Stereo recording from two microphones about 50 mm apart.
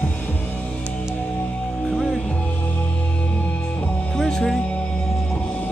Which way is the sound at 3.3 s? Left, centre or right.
Left.